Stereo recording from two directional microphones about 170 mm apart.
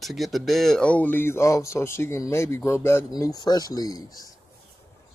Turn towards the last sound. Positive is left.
turn(degrees=20)  # may be behind; listen again after turning